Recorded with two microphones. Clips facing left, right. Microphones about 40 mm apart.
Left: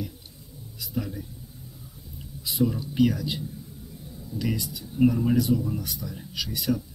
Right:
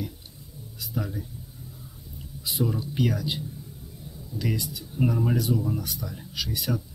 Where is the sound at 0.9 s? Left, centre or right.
Centre.